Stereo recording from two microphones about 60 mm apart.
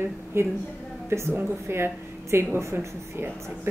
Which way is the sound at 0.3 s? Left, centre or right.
Right.